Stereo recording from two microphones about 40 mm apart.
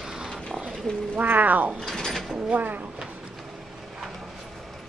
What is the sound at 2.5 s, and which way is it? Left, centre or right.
Speech, right.